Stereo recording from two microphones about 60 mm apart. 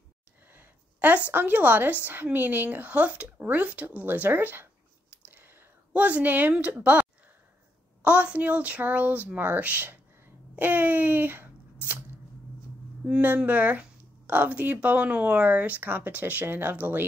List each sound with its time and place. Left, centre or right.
0.5 s a sound: right
1.3 s speech: right
5.2 s whispering: right
5.9 s a woman's voice: right
13.0 s a woman's voice: right